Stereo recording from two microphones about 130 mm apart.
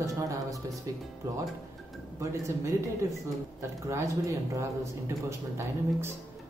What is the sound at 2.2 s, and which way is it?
Speech, 20° right (ahead or behind).